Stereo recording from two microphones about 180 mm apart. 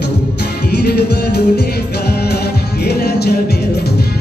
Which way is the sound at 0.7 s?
65° left (ahead or behind).